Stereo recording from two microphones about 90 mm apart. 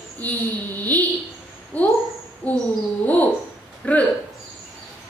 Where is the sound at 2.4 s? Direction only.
15° left (ahead or behind).